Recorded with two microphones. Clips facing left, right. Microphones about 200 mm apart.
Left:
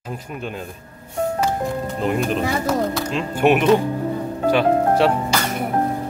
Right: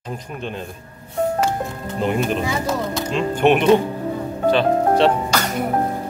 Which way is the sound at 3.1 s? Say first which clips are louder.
Right 2 dB; 5° left (ahead or behind).